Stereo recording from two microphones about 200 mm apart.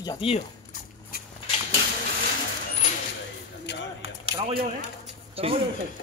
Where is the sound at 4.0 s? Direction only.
25° right (ahead or behind).